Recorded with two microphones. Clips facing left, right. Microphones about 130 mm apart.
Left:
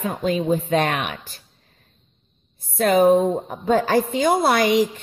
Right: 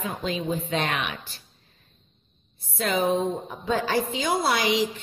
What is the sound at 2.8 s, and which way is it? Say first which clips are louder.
Speech: left 8 dB; 50° left (ahead or behind).